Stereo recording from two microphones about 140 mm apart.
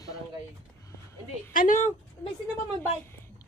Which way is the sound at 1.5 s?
65° left (ahead or behind).